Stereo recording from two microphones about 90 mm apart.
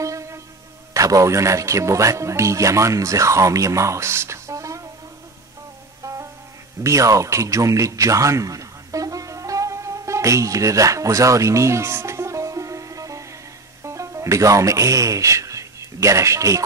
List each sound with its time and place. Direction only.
0.0 s music: 35° right (ahead or behind)
0.9 s speech: 40° right (ahead or behind)
6.0 s music: 35° right (ahead or behind)
6.8 s a sound: 35° right (ahead or behind)
13.8 s speech: 35° right (ahead or behind)